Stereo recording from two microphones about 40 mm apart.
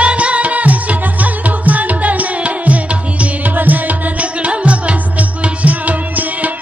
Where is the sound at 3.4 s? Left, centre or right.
Right.